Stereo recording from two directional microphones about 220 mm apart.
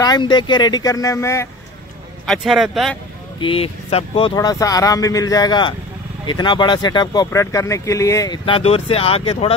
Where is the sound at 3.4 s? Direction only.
25° left (ahead or behind).